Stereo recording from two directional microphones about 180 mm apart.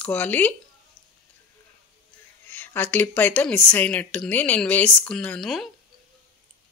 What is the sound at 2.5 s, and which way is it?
A woman's voice, 10° left (ahead or behind).